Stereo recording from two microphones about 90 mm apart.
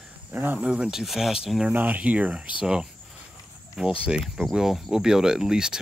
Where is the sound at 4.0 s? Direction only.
10° right (ahead or behind).